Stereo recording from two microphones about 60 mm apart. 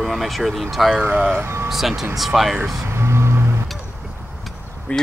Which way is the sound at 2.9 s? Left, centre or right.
Right.